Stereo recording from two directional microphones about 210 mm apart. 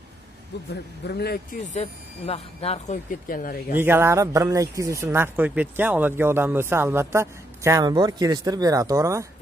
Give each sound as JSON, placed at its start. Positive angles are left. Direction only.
{"t": 1.0, "sound": "a man's voice", "side_deg": 50}
{"t": 1.7, "sound": "speech", "side_deg": 30}
{"t": 3.7, "sound": "speech", "side_deg": -10}